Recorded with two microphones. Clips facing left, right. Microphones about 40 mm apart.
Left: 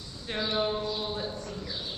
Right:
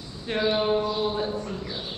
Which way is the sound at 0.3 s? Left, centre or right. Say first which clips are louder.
Right 6 dB; right.